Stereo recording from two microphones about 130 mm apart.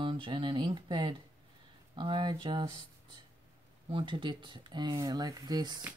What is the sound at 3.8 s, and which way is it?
Speech, 40° right (ahead or behind).